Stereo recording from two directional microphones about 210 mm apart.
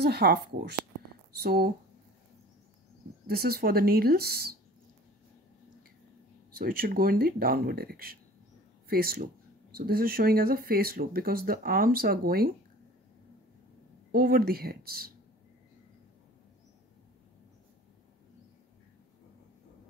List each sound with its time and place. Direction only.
0.0 s speech: 50° right (ahead or behind)
3.3 s speech: 45° right (ahead or behind)
6.5 s speech: 45° right (ahead or behind)
14.1 s speech: 45° right (ahead or behind)